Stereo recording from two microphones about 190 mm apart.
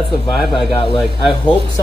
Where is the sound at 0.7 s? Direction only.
25° left (ahead or behind).